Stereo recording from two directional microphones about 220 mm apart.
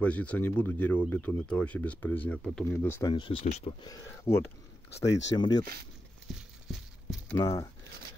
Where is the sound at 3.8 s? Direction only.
15° left (ahead or behind).